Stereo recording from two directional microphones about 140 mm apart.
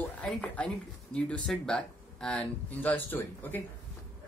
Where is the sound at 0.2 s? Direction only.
5° left (ahead or behind).